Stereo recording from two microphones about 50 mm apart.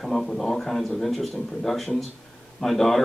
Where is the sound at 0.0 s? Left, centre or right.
Centre.